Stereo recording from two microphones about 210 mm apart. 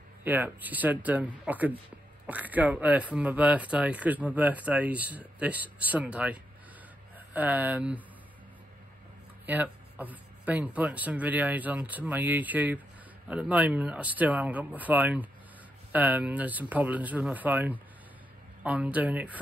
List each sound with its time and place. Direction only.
0.2 s speech: 10° right (ahead or behind)
9.5 s speech: 10° right (ahead or behind)